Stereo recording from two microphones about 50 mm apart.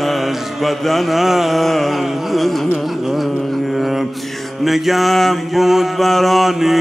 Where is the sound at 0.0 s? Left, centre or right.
Centre.